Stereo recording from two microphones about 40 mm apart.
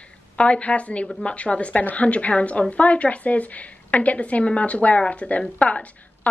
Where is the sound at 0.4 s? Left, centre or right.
Left.